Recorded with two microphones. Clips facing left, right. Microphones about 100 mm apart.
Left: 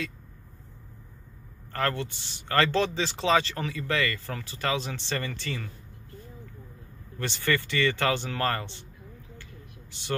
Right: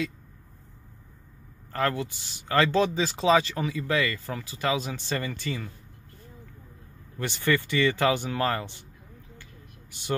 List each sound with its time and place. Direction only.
1.7 s speech: 15° right (ahead or behind)
7.2 s speech: 15° right (ahead or behind)